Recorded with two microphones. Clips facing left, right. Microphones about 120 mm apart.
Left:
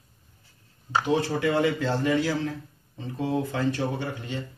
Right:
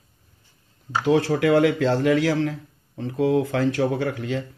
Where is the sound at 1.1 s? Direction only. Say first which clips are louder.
Right 7 dB; 85° right.